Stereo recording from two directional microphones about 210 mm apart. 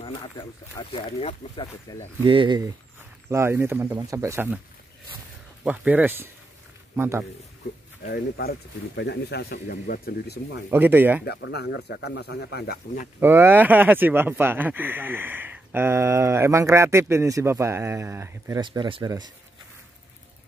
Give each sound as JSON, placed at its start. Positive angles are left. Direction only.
{"t": 0.0, "sound": "speech", "side_deg": 20}
{"t": 2.2, "sound": "speech", "side_deg": -25}
{"t": 5.7, "sound": "speech", "side_deg": -10}
{"t": 8.1, "sound": "speech", "side_deg": 45}
{"t": 10.7, "sound": "speech", "side_deg": -10}
{"t": 11.2, "sound": "speech", "side_deg": 50}
{"t": 13.2, "sound": "speech", "side_deg": -10}